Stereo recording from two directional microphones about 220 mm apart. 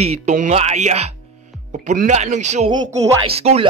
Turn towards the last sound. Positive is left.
turn(degrees=-25)  # may be behind; listen again after turning